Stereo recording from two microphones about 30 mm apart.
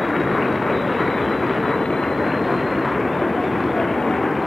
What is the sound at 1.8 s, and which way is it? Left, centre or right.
Vehicle, centre.